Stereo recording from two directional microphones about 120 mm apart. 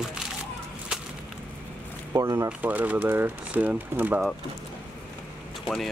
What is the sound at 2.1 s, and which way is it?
Speech, 25° right (ahead or behind).